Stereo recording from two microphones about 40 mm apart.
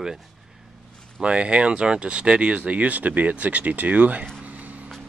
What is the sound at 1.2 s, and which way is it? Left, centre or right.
Speech, right.